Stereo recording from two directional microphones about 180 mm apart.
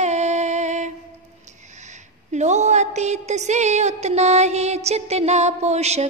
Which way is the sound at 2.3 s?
40° right (ahead or behind).